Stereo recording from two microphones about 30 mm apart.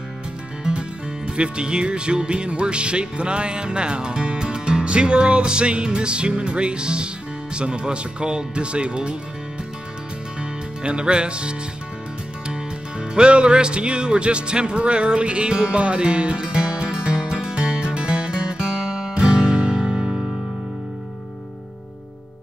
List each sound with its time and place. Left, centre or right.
0.7 s music: right
7.5 s speech: right
10.4 s music: right
13.1 s music: right